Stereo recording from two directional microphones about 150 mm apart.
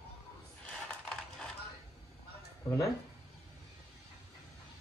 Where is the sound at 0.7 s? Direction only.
5° left (ahead or behind).